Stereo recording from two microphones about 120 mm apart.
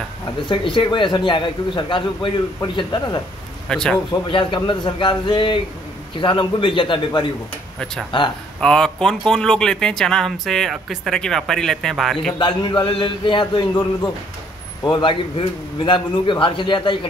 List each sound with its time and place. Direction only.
0.5 s a man's voice: 45° left (ahead or behind)
3.6 s speech: 5° left (ahead or behind)
4.3 s a man's voice: 45° left (ahead or behind)
8.1 s a man's voice: 45° left (ahead or behind)
8.5 s speech: 5° left (ahead or behind)
12.4 s a man's voice: 45° left (ahead or behind)
14.8 s a man's voice: 40° left (ahead or behind)